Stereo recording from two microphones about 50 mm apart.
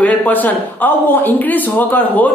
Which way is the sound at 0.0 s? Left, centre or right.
Left.